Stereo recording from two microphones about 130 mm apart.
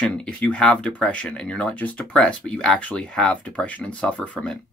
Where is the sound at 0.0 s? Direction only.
10° left (ahead or behind).